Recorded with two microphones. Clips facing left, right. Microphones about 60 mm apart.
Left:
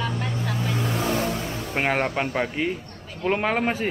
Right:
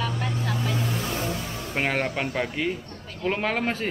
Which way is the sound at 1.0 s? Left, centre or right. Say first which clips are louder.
Left 5 dB; left.